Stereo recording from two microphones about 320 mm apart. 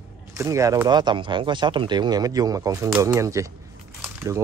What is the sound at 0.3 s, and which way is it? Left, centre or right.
A man's voice, centre.